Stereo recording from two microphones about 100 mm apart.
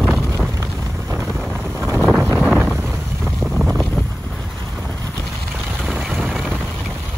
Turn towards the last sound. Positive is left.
turn(degrees=0)  # may be behind; listen again after turning